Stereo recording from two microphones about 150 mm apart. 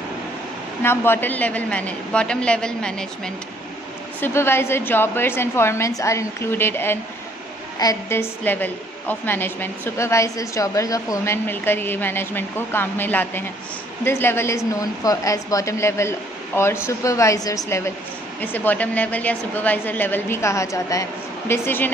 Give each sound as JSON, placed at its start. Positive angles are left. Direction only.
{"t": 0.8, "sound": "a woman's voice", "side_deg": 15}
{"t": 4.2, "sound": "a woman's voice", "side_deg": 15}